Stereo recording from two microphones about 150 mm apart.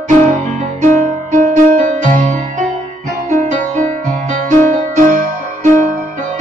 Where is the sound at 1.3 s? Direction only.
60° right (ahead or behind).